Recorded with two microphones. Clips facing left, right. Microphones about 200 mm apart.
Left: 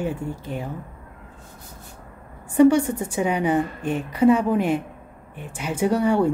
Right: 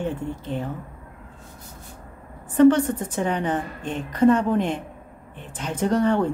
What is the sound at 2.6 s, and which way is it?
A woman's voice, 10° left (ahead or behind).